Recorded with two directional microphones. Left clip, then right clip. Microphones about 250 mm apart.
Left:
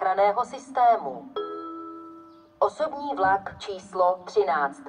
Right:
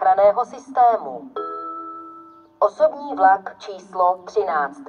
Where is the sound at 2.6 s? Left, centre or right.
Left.